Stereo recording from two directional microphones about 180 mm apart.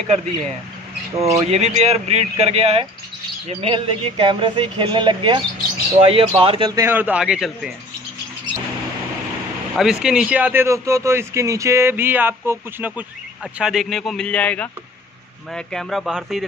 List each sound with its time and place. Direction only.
1.1 s a man's voice: 15° right (ahead or behind)
1.5 s a man's voice: 35° right (ahead or behind); by 7.7 s 5° right (ahead or behind)
9.8 s a man's voice: 5° right (ahead or behind)